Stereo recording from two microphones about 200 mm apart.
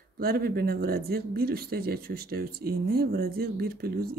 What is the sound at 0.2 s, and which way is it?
Speech, 50° right (ahead or behind).